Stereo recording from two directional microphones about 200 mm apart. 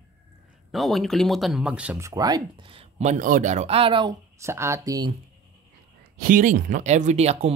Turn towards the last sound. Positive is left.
turn(degrees=-35)  # may be behind; listen again after turning